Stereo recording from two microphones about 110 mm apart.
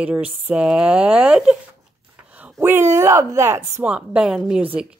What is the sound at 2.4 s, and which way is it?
Speech, 20° right (ahead or behind).